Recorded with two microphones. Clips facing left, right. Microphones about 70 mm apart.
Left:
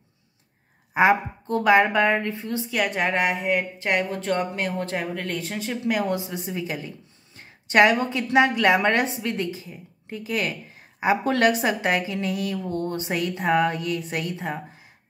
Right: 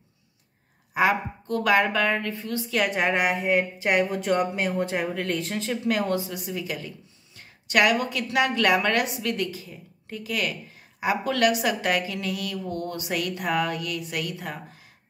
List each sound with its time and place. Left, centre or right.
0.9 s a woman's voice: left
2.7 s a woman's voice: centre
5.1 s a woman's voice: centre; by 14.6 s left